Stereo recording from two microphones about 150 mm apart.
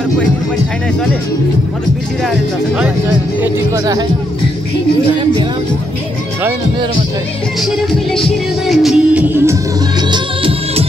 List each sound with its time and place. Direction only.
3.7 s speech: 25° right (ahead or behind)
7.6 s music: centre (ahead or behind)
10.1 s music of bollywood: 35° right (ahead or behind)